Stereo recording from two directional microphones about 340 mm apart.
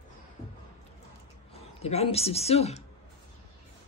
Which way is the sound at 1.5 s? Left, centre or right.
Centre.